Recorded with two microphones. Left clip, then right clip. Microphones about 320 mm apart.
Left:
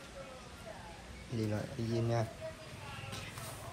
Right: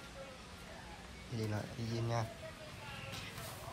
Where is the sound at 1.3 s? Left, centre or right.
Centre.